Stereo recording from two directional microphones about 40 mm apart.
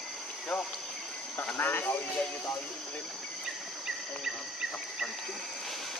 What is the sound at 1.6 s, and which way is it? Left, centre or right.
Speech, left.